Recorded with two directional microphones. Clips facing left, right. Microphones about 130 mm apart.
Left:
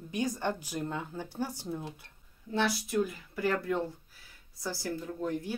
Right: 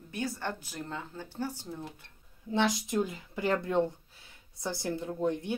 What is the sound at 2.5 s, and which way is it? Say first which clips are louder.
Speech: right 2 dB; 20° right (ahead or behind).